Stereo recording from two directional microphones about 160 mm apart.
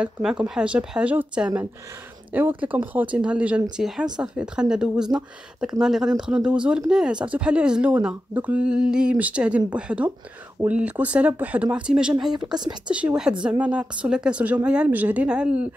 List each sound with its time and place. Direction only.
0.0 s speech: 5° right (ahead or behind)
12.4 s speech: 25° right (ahead or behind)
12.9 s speech: 5° right (ahead or behind)